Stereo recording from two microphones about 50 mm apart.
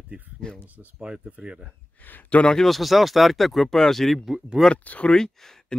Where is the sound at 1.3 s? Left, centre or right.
Right.